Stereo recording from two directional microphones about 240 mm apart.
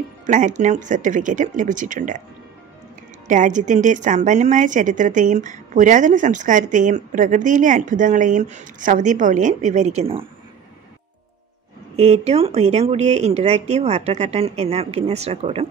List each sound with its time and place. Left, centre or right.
0.3 s a woman's voice: right
3.3 s a woman's voice: right
12.0 s speech: right